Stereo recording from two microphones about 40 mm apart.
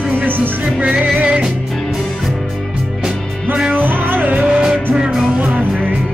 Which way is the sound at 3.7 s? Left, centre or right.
Right.